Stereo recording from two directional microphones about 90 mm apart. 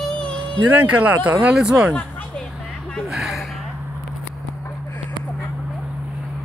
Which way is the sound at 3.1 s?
5° right (ahead or behind).